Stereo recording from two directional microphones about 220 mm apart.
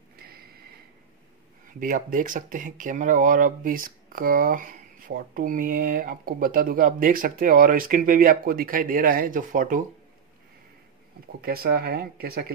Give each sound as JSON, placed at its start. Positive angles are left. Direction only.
{"t": 1.8, "sound": "speech", "side_deg": -40}
{"t": 11.4, "sound": "speech", "side_deg": -45}